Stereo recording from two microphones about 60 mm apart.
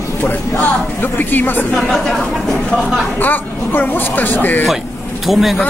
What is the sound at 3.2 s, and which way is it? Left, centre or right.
Speech, left.